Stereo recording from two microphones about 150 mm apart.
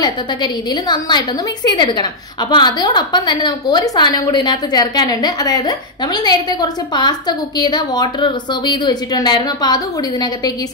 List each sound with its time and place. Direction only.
0.0 s a woman's voice: 30° left (ahead or behind)